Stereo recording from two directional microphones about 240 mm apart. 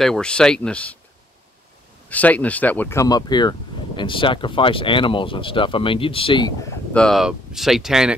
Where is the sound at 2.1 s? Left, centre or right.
Centre.